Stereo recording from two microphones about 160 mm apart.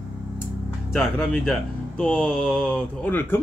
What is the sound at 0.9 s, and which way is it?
Speech, centre (ahead or behind).